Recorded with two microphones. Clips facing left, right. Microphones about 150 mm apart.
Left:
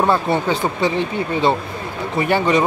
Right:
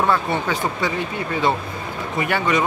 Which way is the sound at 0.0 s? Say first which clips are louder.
Left 3 dB; 30° left (ahead or behind).